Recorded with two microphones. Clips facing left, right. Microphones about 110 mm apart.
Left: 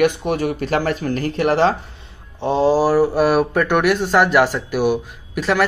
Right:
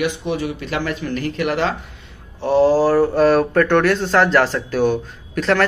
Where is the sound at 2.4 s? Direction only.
20° left (ahead or behind).